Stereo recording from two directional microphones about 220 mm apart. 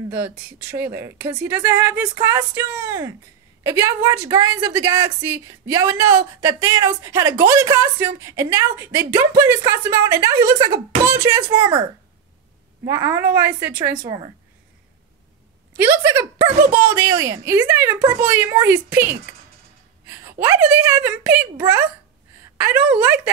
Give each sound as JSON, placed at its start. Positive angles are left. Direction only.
{"t": 0.1, "sound": "a woman's voice", "side_deg": -10}
{"t": 12.8, "sound": "a woman's voice", "side_deg": -15}
{"t": 14.0, "sound": "a woman's voice", "side_deg": -20}
{"t": 16.8, "sound": "a woman's voice", "side_deg": -10}
{"t": 20.1, "sound": "a woman's voice", "side_deg": -10}